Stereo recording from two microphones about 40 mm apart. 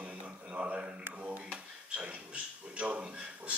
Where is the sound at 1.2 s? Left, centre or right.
Right.